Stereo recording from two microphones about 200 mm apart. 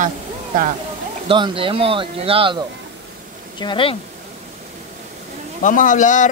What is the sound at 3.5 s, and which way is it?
Speech, 25° left (ahead or behind).